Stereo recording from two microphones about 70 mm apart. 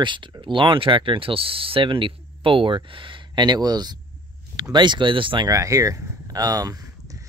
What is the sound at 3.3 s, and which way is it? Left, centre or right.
Speech, right.